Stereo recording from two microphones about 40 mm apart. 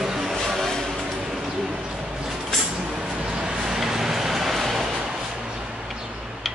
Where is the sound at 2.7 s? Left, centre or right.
Right; by 5.0 s centre.